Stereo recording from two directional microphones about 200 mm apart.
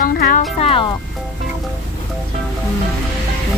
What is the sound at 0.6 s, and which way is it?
Speech, 25° left (ahead or behind).